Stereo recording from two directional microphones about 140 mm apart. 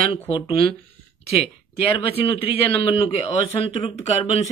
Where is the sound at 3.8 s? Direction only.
40° left (ahead or behind).